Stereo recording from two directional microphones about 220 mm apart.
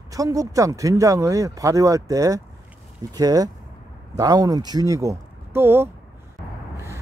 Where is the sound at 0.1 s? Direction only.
15° right (ahead or behind).